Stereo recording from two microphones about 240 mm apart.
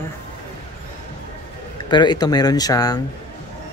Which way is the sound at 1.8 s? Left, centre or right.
Centre.